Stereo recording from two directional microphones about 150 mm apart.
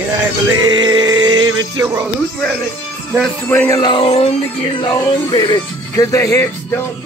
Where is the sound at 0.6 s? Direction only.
30° right (ahead or behind).